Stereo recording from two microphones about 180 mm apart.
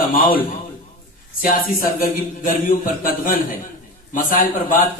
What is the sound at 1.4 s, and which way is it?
A man's voice, 50° left (ahead or behind).